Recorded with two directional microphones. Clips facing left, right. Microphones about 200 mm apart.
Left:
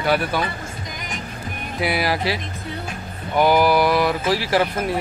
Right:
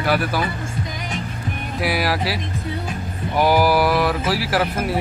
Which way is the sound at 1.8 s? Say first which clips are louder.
Even; centre (ahead or behind).